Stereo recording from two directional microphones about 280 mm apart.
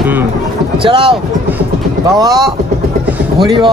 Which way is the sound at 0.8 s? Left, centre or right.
Centre.